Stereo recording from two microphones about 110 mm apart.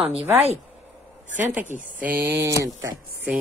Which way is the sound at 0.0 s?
60° right (ahead or behind).